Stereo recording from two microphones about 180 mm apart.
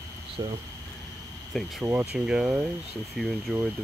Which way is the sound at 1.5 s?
10° right (ahead or behind).